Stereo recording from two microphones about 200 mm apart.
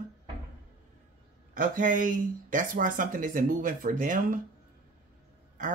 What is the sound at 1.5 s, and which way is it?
Speech, 40° right (ahead or behind).